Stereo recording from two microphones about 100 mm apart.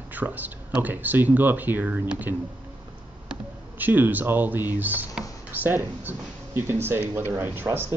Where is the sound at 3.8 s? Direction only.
20° right (ahead or behind).